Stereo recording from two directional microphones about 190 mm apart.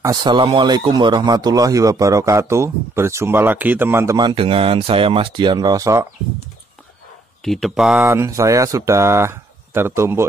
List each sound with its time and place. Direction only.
0.0 s speech: 20° right (ahead or behind)
7.4 s speech: centre (ahead or behind)
8.0 s speech: 15° right (ahead or behind)